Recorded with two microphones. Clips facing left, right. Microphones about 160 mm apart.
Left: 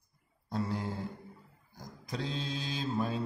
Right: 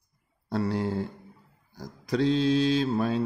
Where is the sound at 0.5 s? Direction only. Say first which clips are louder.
Right 7 dB; 75° right (ahead or behind).